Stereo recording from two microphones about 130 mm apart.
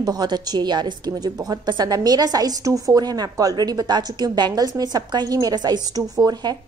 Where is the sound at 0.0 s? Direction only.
30° right (ahead or behind).